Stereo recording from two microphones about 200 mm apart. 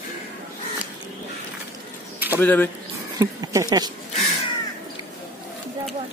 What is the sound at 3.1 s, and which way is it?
Speech, 15° right (ahead or behind).